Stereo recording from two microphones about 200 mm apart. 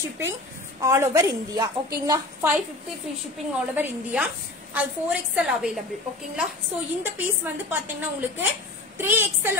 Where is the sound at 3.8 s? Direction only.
10° right (ahead or behind).